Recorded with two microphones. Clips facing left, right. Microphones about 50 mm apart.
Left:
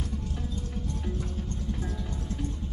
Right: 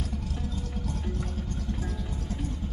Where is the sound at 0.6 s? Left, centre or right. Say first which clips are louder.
Right 1 dB; right.